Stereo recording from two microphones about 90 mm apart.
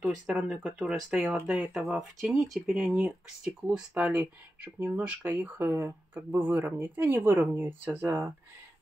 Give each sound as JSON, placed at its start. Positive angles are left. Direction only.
{"t": 0.0, "sound": "speech", "side_deg": -10}